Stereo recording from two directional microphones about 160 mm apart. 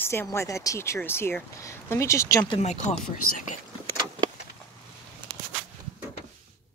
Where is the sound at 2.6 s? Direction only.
45° left (ahead or behind).